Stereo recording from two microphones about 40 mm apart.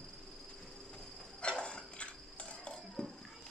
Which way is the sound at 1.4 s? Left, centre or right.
Left.